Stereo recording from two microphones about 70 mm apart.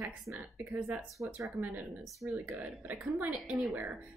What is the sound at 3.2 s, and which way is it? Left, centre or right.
Speech, centre.